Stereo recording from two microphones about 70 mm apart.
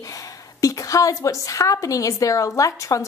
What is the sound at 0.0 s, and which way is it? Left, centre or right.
A woman's voice, left.